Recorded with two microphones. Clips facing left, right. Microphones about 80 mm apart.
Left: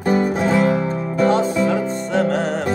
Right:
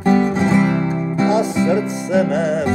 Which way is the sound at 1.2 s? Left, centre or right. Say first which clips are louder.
Even; centre.